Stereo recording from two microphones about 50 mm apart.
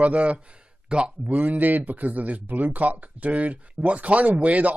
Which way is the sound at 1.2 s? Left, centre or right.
Right.